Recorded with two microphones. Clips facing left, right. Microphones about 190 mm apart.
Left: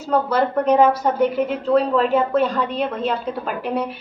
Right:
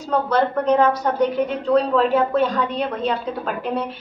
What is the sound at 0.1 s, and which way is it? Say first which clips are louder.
A woman's voice: left 1 dB; 5° left (ahead or behind).